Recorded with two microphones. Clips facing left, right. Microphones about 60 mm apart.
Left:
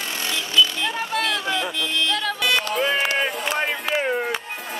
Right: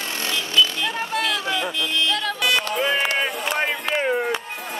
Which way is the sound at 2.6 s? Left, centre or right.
Centre.